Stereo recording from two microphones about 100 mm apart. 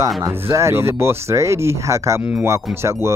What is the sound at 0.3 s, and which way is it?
Speech, 30° right (ahead or behind).